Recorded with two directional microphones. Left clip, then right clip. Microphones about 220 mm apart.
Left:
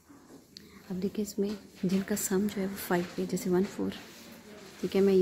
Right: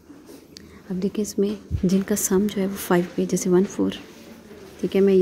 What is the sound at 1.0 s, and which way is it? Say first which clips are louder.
Speech: right 9 dB; 15° right (ahead or behind).